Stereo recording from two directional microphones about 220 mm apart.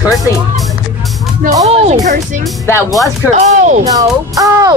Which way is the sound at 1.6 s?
30° right (ahead or behind).